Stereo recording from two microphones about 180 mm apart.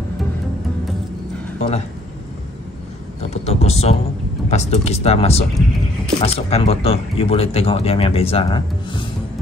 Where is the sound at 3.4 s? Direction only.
35° left (ahead or behind).